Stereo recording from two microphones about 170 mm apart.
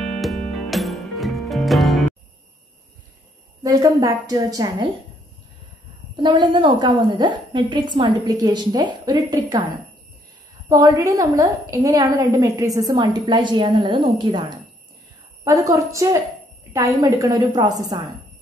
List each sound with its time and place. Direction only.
0.0 s music: centre (ahead or behind)
3.6 s a woman's voice: 20° right (ahead or behind)
6.1 s a woman's voice: 25° right (ahead or behind)
10.7 s a woman's voice: 20° right (ahead or behind)